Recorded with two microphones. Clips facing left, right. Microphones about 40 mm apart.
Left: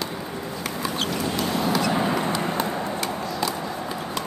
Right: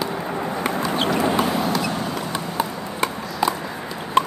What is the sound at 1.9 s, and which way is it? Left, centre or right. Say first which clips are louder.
Vehicle: left 3 dB; centre.